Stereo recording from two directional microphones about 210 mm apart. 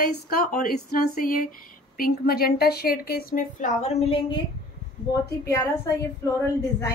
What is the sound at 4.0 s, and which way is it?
Speech, 25° left (ahead or behind).